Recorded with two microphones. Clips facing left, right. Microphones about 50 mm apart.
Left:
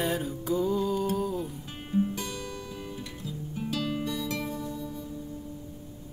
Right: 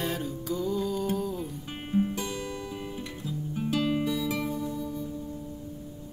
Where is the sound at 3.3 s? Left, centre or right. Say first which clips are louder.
Right 3 dB; centre.